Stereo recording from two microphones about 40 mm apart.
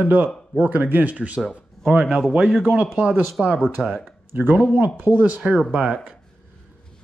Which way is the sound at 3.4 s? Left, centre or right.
Centre.